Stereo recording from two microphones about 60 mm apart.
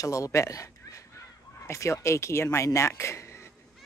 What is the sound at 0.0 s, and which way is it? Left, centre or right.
Speech, left.